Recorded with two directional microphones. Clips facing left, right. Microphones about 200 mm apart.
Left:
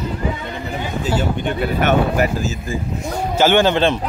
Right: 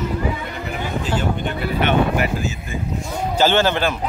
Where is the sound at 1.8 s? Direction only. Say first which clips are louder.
Left 1 dB; 45° left (ahead or behind).